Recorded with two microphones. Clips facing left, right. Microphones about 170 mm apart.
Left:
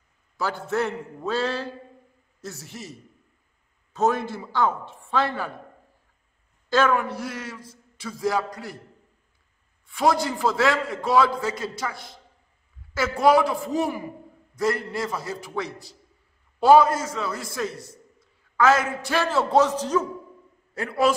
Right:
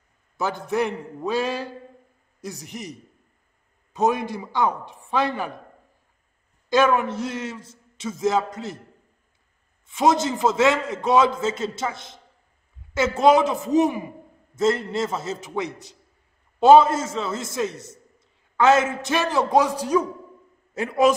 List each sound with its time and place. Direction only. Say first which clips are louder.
0.4 s a man's voice: right 2 dB; 15° right (ahead or behind)
6.7 s a man's voice: right 2 dB; 20° right (ahead or behind)
9.8 s a man's voice: right 2 dB; 20° right (ahead or behind)